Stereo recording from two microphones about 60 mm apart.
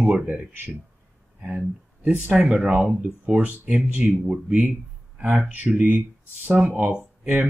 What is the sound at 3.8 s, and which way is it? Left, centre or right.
Speech, centre.